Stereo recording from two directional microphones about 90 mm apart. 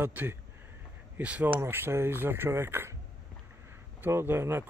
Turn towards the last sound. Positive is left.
turn(degrees=-25)  # may be behind; listen again after turning